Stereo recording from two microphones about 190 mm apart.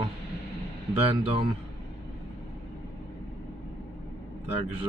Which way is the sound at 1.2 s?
30° right (ahead or behind).